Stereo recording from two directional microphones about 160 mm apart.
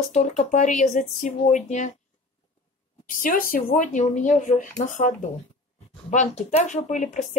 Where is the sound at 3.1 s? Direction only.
60° left (ahead or behind).